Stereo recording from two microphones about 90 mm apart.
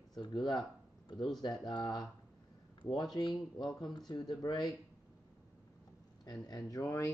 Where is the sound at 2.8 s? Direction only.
60° left (ahead or behind).